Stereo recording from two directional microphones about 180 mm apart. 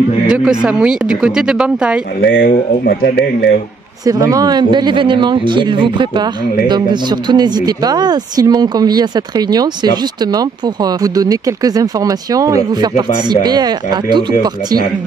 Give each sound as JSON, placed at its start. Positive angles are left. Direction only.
{"t": 0.3, "sound": "speech", "side_deg": -5}
{"t": 2.2, "sound": "speech", "side_deg": 60}
{"t": 4.0, "sound": "speech", "side_deg": -20}